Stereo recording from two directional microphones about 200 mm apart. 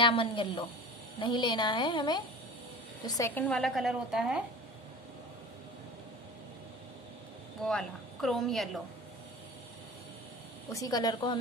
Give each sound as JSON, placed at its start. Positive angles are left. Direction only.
{"t": 0.0, "sound": "a woman's voice", "side_deg": 25}
{"t": 7.6, "sound": "a woman's voice", "side_deg": 0}
{"t": 10.7, "sound": "a woman's voice", "side_deg": 15}